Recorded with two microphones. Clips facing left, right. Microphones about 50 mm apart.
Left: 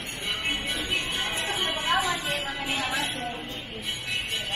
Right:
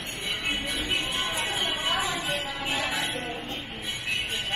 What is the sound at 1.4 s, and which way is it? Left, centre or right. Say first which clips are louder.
Music: even; centre.